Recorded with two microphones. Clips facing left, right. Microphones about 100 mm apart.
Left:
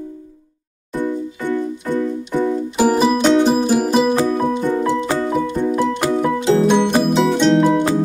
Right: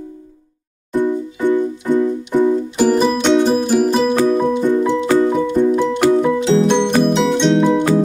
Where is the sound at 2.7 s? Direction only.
5° left (ahead or behind).